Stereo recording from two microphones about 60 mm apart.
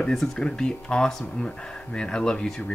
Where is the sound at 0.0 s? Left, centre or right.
Centre.